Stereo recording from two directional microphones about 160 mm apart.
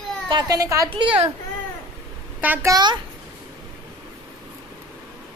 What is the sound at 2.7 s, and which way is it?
Speech, 25° right (ahead or behind).